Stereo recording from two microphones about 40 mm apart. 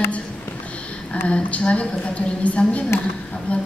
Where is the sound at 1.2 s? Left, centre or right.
Left.